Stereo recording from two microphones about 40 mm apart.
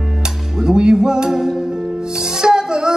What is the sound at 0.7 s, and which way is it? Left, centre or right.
Music, centre.